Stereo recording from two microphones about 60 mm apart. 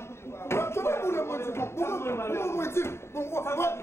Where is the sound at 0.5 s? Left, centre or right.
Left.